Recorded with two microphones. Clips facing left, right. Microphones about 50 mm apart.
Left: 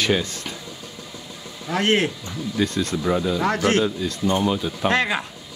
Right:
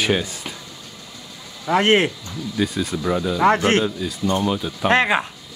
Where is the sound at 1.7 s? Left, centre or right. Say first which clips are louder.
Right 4 dB; right.